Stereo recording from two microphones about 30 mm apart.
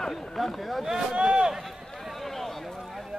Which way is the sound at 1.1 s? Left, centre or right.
Right.